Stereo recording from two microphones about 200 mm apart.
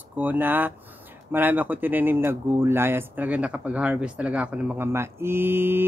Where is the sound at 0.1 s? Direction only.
10° right (ahead or behind).